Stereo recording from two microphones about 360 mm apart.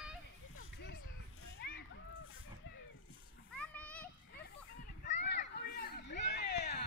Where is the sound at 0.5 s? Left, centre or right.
Left.